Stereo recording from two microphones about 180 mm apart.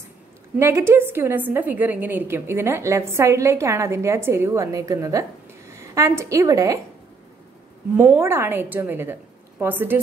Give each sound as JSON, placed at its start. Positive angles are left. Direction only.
{"t": 0.6, "sound": "a woman's voice", "side_deg": -15}
{"t": 7.9, "sound": "a woman's voice", "side_deg": -5}